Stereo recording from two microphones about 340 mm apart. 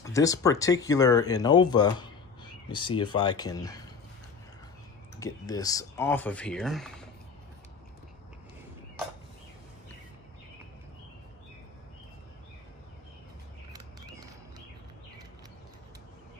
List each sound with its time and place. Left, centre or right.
0.0 s speech: centre
5.2 s speech: centre